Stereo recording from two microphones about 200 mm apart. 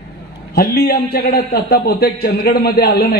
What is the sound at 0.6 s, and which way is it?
A man's voice, 50° left (ahead or behind).